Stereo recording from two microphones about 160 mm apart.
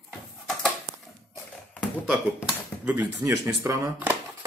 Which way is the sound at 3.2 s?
20° right (ahead or behind).